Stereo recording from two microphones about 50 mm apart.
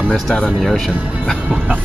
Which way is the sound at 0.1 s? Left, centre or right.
Centre.